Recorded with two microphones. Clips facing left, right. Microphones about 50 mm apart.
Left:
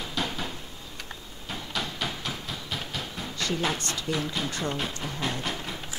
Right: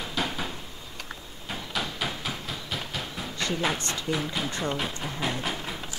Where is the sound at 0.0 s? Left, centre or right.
Centre.